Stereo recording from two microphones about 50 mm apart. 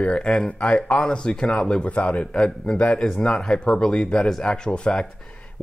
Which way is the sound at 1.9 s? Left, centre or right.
Left.